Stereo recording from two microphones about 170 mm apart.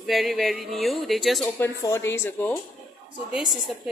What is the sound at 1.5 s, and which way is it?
Speech, 15° left (ahead or behind).